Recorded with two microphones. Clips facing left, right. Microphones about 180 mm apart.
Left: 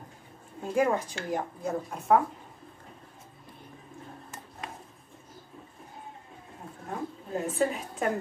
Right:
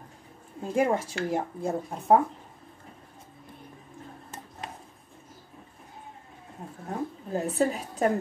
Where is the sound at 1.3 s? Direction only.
30° right (ahead or behind).